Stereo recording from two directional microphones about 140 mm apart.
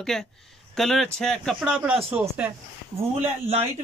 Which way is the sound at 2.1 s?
10° right (ahead or behind).